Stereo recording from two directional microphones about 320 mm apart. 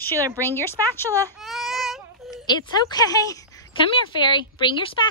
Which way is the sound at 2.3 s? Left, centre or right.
Centre.